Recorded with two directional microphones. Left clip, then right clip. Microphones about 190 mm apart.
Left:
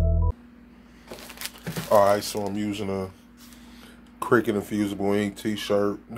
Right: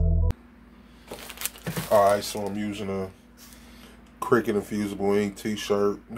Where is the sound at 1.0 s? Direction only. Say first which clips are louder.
Right 1 dB; 5° left (ahead or behind).